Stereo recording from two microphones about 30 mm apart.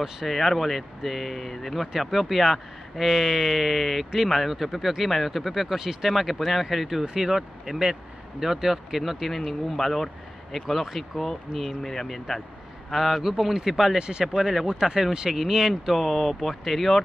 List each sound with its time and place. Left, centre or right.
0.3 s speech: centre
2.0 s speech: centre
5.8 s speech: centre
6.0 s speech: centre
12.9 s speech: centre
13.2 s speech: centre
13.9 s speech: right
14.2 s speech: centre